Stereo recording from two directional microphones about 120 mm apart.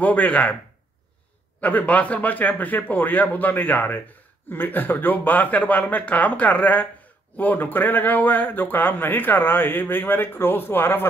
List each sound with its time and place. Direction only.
0.0 s a man's voice: 15° left (ahead or behind)
1.6 s a man's voice: 15° left (ahead or behind)